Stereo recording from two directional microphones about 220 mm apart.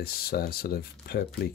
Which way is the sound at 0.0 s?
45° left (ahead or behind).